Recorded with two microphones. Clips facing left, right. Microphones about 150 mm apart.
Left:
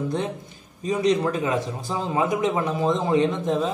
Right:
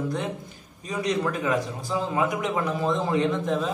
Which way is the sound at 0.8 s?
25° left (ahead or behind).